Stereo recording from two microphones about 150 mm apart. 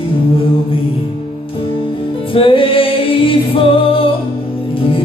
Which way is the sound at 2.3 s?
35° left (ahead or behind).